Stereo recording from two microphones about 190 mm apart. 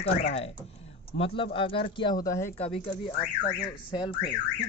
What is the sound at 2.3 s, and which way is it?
Speech, 15° left (ahead or behind).